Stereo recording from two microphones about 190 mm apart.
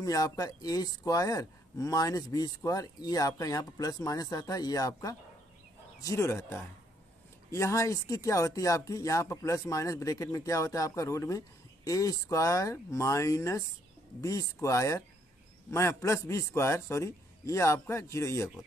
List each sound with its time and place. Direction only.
0.0 s speech: 20° left (ahead or behind)